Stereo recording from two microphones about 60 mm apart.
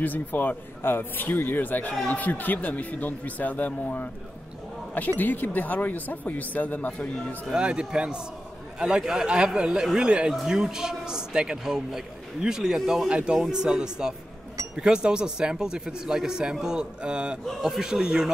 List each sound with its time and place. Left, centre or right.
0.0 s speech: left
5.2 s speech: left
7.5 s a man's voice: centre
17.5 s a man's voice: centre